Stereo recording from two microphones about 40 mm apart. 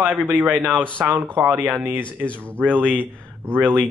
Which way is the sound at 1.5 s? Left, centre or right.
Right.